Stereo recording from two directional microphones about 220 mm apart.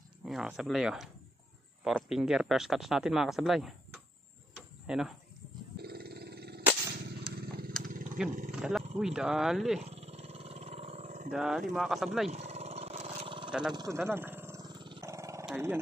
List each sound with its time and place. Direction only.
0.2 s speech: centre (ahead or behind)
4.6 s cricket: 5° right (ahead or behind)
5.8 s a sound: 45° right (ahead or behind)
7.1 s vehicle: 45° right (ahead or behind)
7.8 s a sound: 35° right (ahead or behind)
8.5 s a sound: 5° right (ahead or behind)
9.0 s speech: centre (ahead or behind)
9.8 s dog: 30° right (ahead or behind)
11.3 s speech: centre (ahead or behind)
12.3 s a sound: 30° right (ahead or behind)
13.5 s speech: 5° right (ahead or behind)
13.7 s dog: 15° right (ahead or behind)
15.4 s speech: 10° right (ahead or behind)